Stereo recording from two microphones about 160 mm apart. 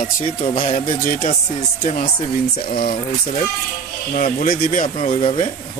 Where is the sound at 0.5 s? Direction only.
35° left (ahead or behind).